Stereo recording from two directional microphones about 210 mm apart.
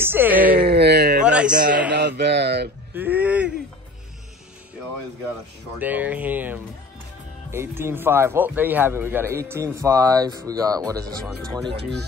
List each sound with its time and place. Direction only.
0.0 s speech: 10° right (ahead or behind)
0.6 s a sound: 50° right (ahead or behind)
1.2 s a sound: 5° right (ahead or behind)
1.5 s a man's voice: 40° right (ahead or behind)
1.9 s speech: 55° right (ahead or behind)
2.9 s a man's voice: 10° right (ahead or behind)
5.8 s a man's voice: 10° right (ahead or behind)
11.6 s speech: 55° right (ahead or behind)